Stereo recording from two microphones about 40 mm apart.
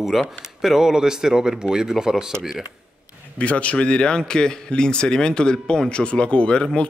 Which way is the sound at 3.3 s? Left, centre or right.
Left.